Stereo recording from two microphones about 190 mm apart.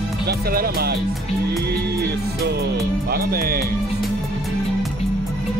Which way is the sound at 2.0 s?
60° right (ahead or behind).